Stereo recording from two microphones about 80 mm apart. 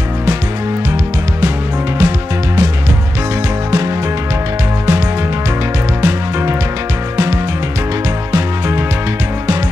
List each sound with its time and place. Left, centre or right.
2.0 s music: right
8.3 s music: right